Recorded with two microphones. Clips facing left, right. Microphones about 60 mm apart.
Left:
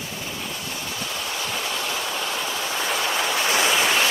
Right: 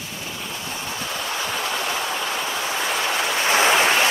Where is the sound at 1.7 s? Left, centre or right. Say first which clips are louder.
Right 3 dB; centre.